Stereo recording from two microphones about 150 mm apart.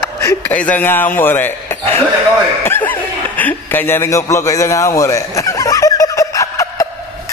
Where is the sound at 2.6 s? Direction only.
15° left (ahead or behind).